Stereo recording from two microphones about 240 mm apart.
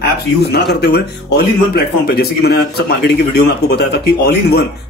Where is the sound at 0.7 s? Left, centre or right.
Left.